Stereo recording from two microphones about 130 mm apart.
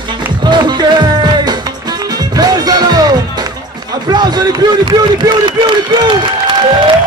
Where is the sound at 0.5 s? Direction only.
35° right (ahead or behind).